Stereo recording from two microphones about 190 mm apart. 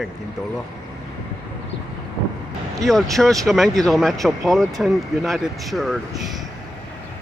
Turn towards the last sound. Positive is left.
turn(degrees=0)  # may be behind; listen again after turning